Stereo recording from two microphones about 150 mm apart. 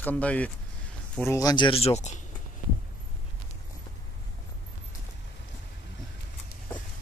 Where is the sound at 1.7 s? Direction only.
40° left (ahead or behind).